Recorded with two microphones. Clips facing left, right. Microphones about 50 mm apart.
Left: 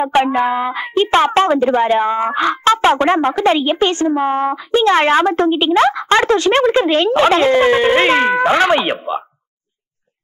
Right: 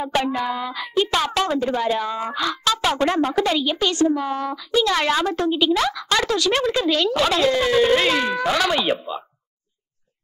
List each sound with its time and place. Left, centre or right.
0.0 s a woman's voice: left